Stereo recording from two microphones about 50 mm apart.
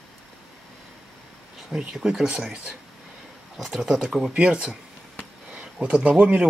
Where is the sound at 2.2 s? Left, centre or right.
Right.